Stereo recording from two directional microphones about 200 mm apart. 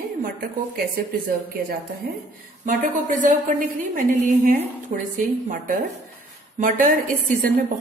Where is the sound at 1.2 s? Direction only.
45° right (ahead or behind).